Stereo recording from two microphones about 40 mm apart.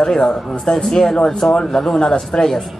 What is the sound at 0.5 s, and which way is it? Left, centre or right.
Speech, centre.